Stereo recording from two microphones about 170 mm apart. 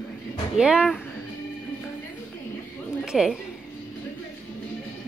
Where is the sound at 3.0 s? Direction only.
5° right (ahead or behind).